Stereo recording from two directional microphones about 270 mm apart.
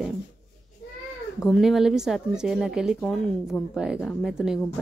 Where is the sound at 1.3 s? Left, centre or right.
Centre.